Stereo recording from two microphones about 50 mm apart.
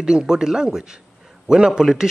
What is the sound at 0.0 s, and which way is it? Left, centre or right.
Speech, centre.